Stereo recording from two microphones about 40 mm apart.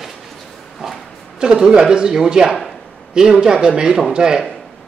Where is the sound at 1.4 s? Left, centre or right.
Centre.